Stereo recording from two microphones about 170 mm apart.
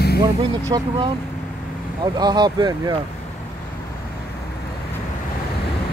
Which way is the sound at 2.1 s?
25° right (ahead or behind).